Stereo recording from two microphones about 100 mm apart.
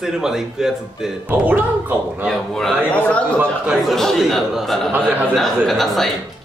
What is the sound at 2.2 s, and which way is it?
A man's voice, 5° left (ahead or behind).